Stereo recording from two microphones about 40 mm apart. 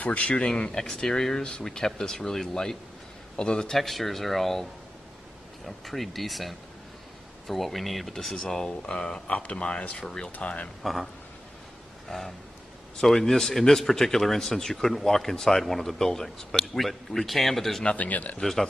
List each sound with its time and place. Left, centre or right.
0.0 s speech: left
0.5 s speech: centre
3.7 s speech: centre
5.7 s speech: centre
8.6 s speech: left
9.3 s speech: left
10.3 s speech: left
10.8 s speech: centre
12.1 s speech: centre
13.0 s speech: centre
17.8 s speech: left
18.4 s speech: centre